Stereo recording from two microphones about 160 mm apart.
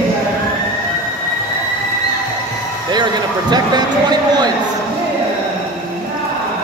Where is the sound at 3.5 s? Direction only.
25° right (ahead or behind).